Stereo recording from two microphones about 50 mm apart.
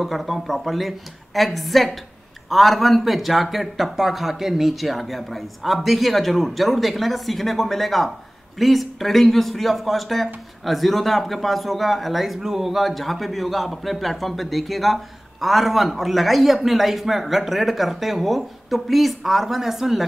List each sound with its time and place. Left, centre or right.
0.0 s speech: centre